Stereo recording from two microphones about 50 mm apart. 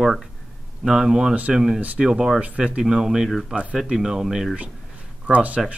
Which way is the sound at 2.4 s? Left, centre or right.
Right.